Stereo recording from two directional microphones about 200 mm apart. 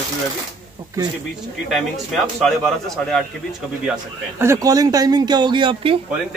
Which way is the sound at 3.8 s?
5° right (ahead or behind).